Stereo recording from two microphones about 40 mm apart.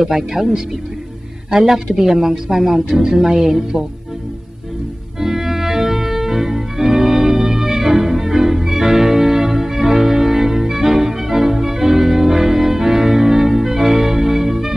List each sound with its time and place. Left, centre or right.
0.0 s music: centre
1.5 s music: centre
5.2 s music: centre